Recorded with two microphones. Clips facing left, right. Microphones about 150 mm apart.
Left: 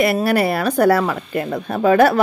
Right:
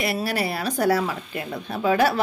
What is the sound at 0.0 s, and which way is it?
A woman's voice, 55° left (ahead or behind).